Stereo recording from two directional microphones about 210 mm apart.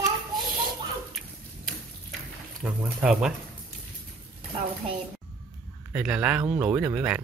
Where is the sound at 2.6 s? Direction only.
5° right (ahead or behind).